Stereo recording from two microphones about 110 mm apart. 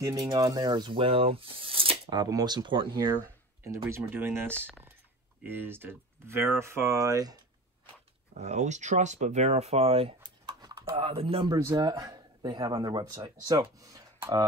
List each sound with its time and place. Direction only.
0.0 s speech: 40° right (ahead or behind); by 2.1 s 55° right (ahead or behind)
2.1 s speech: 35° right (ahead or behind)
3.6 s speech: 25° right (ahead or behind)
4.6 s typing: 20° right (ahead or behind)
5.4 s speech: 20° right (ahead or behind)
8.4 s speech: 90° right; by 10.1 s 65° right (ahead or behind)
10.4 s a sound: 50° right (ahead or behind)
11.5 s speech: 35° right (ahead or behind)